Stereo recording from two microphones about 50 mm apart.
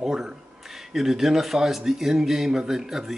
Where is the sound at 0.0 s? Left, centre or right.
Centre.